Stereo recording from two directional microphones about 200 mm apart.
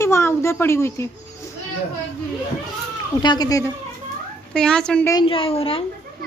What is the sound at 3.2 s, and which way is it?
Speech, 20° left (ahead or behind).